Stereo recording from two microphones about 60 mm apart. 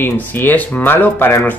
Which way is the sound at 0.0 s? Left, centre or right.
Left.